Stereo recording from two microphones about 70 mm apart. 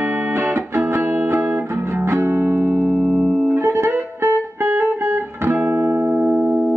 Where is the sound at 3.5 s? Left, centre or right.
Right.